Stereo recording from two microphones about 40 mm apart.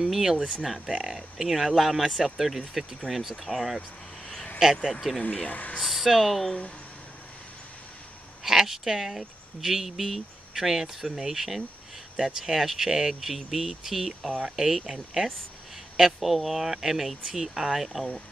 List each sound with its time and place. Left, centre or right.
0.0 s speech: centre
4.6 s speech: centre
5.2 s speech: left
5.5 s speech: left
5.8 s speech: centre
8.5 s speech: centre
16.2 s speech: centre
17.8 s speech: centre